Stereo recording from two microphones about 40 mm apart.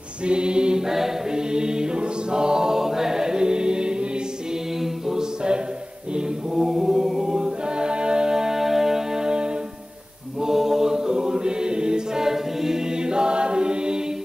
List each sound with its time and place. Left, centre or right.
0.2 s mantra: right
0.8 s choir: centre
6.6 s choir: centre
10.4 s a capella: centre